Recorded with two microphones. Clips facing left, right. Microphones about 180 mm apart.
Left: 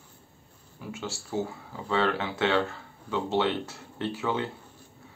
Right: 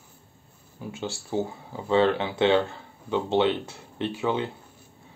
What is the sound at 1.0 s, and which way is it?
Speech, 20° right (ahead or behind).